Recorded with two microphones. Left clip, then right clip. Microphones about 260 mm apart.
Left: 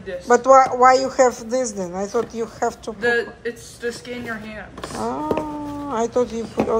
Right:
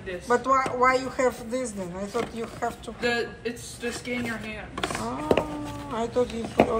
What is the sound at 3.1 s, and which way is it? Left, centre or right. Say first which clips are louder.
Speech: left 6 dB; left.